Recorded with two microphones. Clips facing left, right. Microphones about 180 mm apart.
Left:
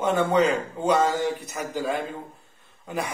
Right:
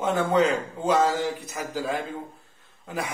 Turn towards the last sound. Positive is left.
turn(degrees=-5)  # may be behind; listen again after turning